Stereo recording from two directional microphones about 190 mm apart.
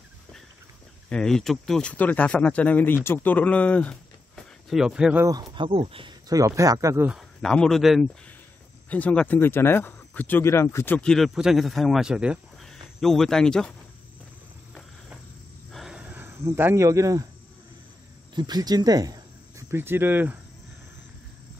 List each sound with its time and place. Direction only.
1.0 s speech: 5° left (ahead or behind)
5.2 s speech: 20° right (ahead or behind)
7.1 s speech: centre (ahead or behind)
15.7 s cricket: 5° right (ahead or behind)
18.3 s speech: 20° right (ahead or behind)